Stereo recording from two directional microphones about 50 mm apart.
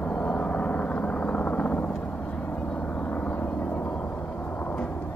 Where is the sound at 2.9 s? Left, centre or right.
Left.